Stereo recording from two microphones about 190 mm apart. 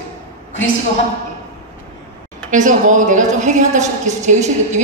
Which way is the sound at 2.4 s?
40° right (ahead or behind).